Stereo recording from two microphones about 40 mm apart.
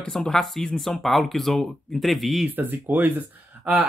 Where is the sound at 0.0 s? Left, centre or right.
Centre.